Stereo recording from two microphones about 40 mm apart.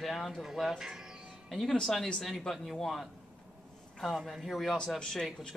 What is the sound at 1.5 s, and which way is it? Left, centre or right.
A man's voice, centre.